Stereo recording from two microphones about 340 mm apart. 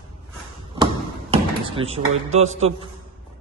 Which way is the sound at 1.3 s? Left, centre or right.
Centre.